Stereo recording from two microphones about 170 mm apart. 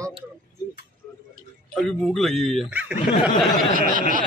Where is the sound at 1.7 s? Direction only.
Centre (ahead or behind).